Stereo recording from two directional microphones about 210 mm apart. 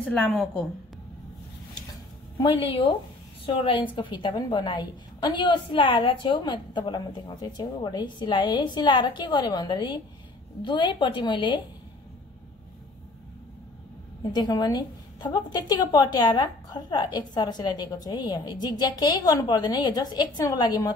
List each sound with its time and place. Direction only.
0.0 s a woman's voice: 5° left (ahead or behind)
2.4 s a woman's voice: 25° left (ahead or behind)
14.3 s a woman's voice: 20° left (ahead or behind)